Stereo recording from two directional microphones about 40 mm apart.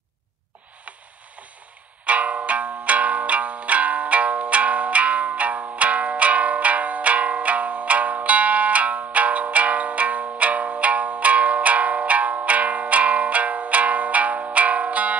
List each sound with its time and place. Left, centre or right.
2.0 s music: right